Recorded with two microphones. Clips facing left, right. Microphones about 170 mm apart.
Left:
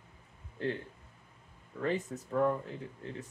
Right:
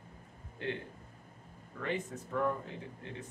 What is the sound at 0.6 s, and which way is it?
Speech, 40° left (ahead or behind).